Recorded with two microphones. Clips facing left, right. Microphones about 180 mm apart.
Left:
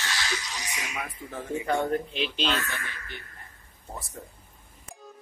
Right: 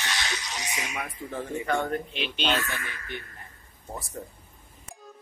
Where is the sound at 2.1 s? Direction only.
35° left (ahead or behind).